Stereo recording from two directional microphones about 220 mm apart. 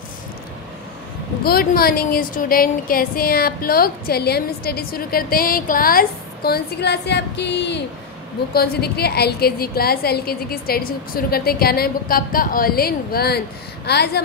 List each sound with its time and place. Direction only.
1.4 s a woman's voice: 45° left (ahead or behind)